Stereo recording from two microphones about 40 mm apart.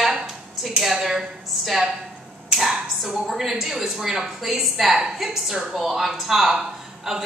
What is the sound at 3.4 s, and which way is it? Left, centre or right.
A woman's voice, centre.